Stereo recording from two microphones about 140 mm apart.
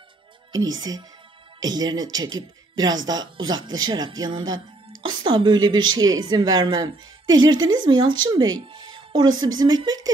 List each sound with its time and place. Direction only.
0.5 s a woman's voice: 25° right (ahead or behind)